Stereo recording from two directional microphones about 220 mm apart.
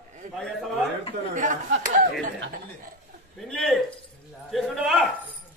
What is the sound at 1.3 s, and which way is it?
Speech, 35° right (ahead or behind).